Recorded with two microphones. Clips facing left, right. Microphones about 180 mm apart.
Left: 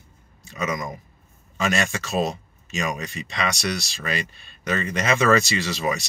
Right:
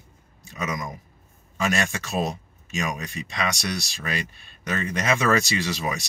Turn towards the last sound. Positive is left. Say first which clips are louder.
# left 1 dB
turn(degrees=-10)  # may be behind; listen again after turning